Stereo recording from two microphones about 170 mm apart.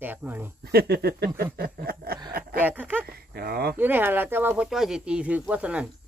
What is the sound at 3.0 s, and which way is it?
Speech, 65° right (ahead or behind).